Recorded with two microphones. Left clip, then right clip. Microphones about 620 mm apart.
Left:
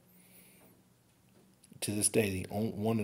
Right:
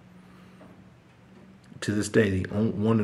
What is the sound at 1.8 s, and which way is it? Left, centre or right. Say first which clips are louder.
Speech: right 8 dB; left.